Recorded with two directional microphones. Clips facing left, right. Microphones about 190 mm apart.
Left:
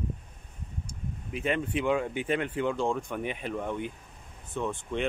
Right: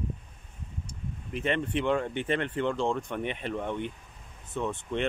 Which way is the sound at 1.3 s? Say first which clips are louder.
Even; 5° left (ahead or behind).